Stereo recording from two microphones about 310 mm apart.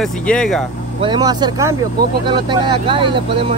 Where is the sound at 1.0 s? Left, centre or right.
Centre.